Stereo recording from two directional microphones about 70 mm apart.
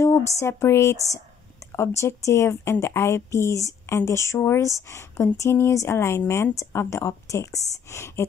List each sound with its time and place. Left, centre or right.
0.0 s a woman's voice: left